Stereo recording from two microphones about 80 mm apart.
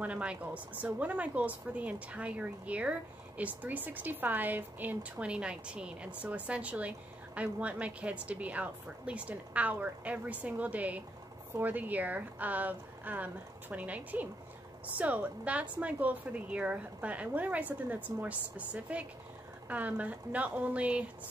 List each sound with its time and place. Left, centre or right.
0.0 s speech: centre